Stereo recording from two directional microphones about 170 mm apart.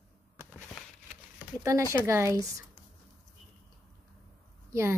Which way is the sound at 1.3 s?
15° right (ahead or behind).